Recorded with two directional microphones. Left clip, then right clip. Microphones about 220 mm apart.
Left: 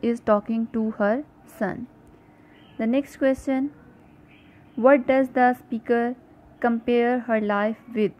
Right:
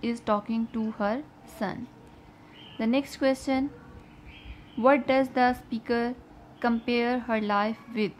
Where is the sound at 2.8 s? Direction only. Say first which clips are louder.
Left 3 dB; 15° left (ahead or behind).